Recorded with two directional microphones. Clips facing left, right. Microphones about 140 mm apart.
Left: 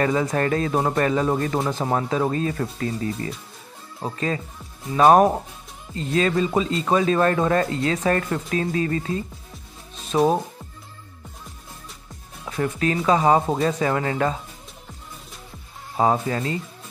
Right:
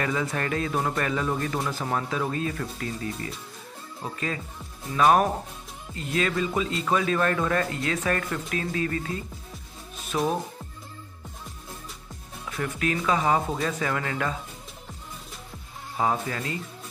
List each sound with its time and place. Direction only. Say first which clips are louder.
0.0 s speech: left 6 dB; 40° left (ahead or behind)
4.9 s speech: left 6 dB; 35° left (ahead or behind)
12.4 s speech: left 5 dB; 35° left (ahead or behind)
16.0 s speech: left 6 dB; 35° left (ahead or behind)